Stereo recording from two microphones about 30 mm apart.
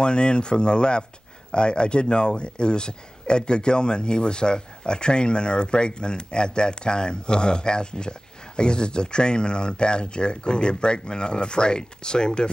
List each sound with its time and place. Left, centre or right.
0.0 s speech: left